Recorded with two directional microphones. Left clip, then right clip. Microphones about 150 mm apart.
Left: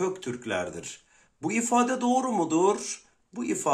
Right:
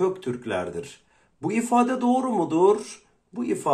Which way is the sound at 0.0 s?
20° left (ahead or behind).